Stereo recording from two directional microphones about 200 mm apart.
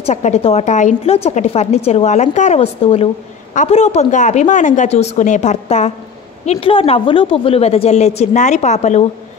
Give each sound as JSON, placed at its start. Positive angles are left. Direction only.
{"t": 0.0, "sound": "a woman's voice", "side_deg": 35}